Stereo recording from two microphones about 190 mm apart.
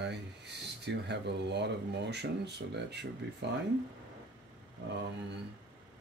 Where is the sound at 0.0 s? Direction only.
65° right (ahead or behind).